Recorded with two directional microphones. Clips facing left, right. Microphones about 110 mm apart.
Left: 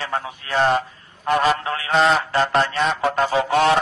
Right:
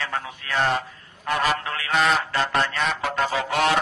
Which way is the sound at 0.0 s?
30° left (ahead or behind).